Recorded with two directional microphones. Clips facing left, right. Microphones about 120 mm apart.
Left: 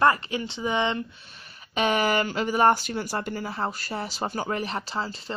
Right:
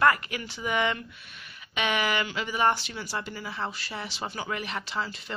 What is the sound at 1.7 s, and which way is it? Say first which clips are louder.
Speech: left 4 dB; 40° left (ahead or behind).